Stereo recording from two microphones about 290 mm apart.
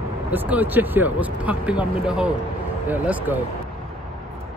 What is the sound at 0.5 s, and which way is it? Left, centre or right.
Speech, centre.